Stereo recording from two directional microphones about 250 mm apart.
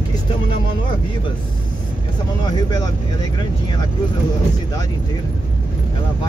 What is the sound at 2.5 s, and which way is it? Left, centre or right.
Speech, centre.